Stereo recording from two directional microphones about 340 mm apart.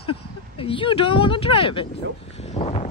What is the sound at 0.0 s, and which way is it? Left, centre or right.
Speech, centre.